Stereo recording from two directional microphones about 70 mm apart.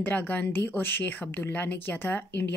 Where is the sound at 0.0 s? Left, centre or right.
Left.